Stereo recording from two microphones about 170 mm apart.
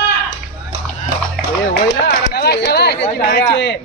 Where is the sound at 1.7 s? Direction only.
70° left (ahead or behind); by 3.8 s 90° left.